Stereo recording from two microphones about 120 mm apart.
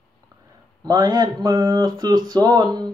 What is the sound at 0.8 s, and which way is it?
Speech, 30° right (ahead or behind).